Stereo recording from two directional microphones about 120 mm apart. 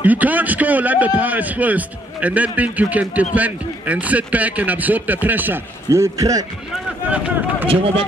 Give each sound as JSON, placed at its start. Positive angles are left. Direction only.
{"t": 0.0, "sound": "a man's voice", "side_deg": -15}
{"t": 7.6, "sound": "speech", "side_deg": -50}